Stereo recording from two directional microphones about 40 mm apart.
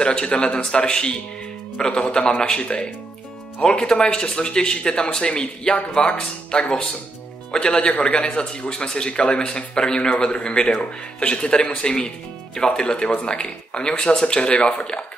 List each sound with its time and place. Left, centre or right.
0.0 s speech: left